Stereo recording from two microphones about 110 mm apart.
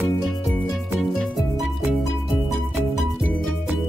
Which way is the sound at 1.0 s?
Centre (ahead or behind).